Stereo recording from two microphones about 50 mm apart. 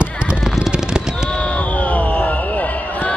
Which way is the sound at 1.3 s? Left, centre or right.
Left.